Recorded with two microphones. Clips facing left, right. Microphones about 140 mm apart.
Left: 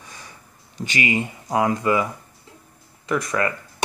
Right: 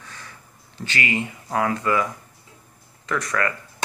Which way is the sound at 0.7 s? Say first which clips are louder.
Left 2 dB; 15° left (ahead or behind).